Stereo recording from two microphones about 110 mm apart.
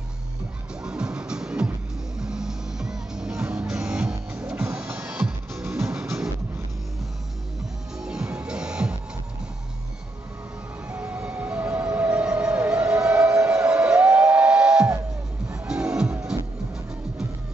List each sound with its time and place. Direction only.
0.8 s music: 5° right (ahead or behind)
5.6 s music: 25° right (ahead or behind)
8.0 s music: 5° right (ahead or behind)
10.9 s music: 15° right (ahead or behind)